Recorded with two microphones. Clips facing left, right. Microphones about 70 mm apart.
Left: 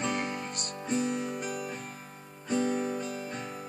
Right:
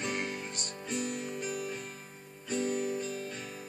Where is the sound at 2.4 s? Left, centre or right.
Left.